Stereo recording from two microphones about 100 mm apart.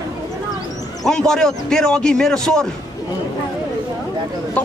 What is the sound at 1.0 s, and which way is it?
A man's voice, 5° left (ahead or behind).